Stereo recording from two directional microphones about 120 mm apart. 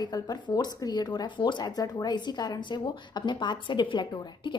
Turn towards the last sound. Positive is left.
turn(degrees=35)  # may be behind; listen again after turning